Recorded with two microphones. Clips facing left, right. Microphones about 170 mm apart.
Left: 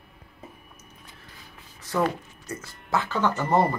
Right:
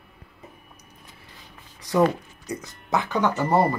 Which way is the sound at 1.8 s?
15° right (ahead or behind).